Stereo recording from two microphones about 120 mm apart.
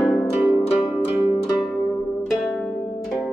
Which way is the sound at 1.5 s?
5° right (ahead or behind).